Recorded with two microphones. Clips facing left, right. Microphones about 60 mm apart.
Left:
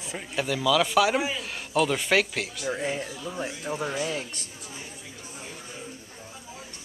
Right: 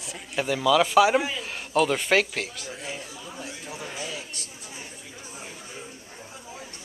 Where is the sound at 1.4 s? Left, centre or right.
Centre.